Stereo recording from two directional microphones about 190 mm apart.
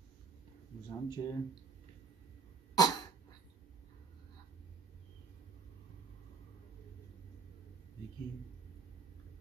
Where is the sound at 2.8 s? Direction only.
20° left (ahead or behind).